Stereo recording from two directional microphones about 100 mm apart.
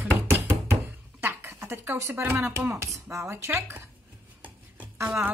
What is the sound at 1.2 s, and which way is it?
Speech, 20° right (ahead or behind).